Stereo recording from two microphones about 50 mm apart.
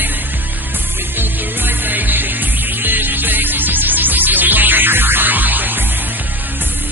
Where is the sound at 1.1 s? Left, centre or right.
Right.